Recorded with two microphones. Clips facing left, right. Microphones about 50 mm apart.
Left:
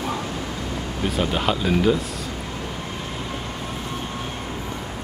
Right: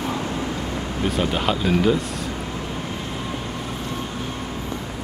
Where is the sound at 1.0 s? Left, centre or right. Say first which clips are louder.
Even; centre.